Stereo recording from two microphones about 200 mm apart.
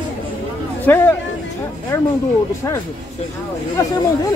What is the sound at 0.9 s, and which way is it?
Speech, 10° left (ahead or behind).